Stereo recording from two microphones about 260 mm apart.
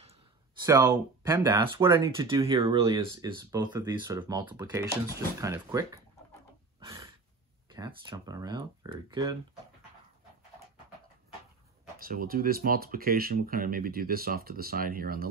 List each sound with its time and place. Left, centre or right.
0.7 s speech: centre
6.8 s a sound: centre
7.7 s speech: centre
12.0 s speech: right